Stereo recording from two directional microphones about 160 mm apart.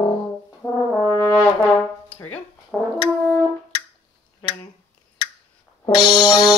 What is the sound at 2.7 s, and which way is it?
Brass instrument, 5° left (ahead or behind).